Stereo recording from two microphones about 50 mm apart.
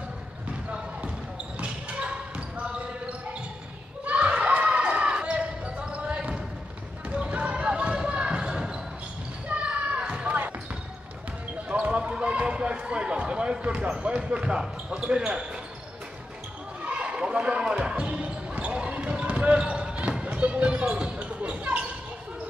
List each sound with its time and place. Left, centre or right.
1.6 s basketball bounce: right
9.5 s basketball bounce: right
11.7 s basketball bounce: right
16.8 s basketball bounce: right